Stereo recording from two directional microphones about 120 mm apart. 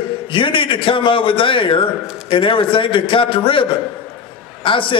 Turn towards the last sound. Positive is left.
turn(degrees=45)  # may be behind; listen again after turning